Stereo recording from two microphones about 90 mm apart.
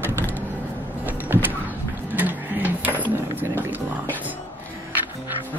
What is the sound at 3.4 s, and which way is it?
Music, 20° right (ahead or behind).